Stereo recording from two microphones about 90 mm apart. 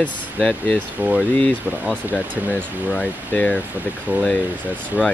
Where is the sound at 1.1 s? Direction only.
10° left (ahead or behind).